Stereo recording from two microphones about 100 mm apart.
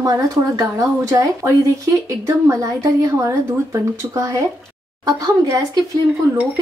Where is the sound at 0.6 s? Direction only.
30° right (ahead or behind).